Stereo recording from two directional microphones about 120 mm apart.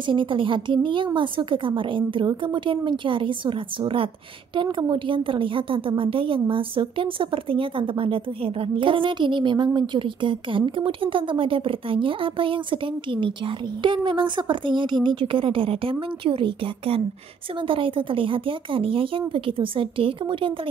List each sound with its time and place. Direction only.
0.0 s a woman's voice: 45° right (ahead or behind)
13.8 s a woman's voice: 40° right (ahead or behind)